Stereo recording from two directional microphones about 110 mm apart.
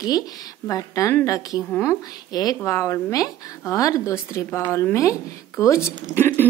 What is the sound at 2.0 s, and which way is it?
A woman's voice, 35° left (ahead or behind).